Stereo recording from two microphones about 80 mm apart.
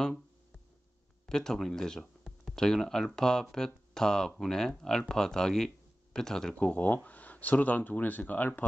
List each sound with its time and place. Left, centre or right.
1.2 s speech: centre